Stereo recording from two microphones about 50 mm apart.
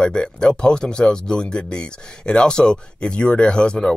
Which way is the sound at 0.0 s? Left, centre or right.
Centre.